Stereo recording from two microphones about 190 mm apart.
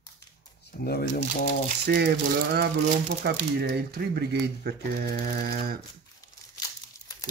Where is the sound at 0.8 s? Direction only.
55° left (ahead or behind).